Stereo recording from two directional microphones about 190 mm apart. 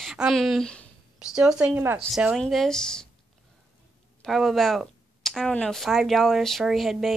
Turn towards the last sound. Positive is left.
turn(degrees=0)  # may be behind; listen again after turning